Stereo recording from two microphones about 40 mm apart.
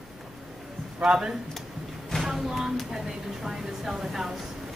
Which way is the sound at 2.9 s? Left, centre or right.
Centre.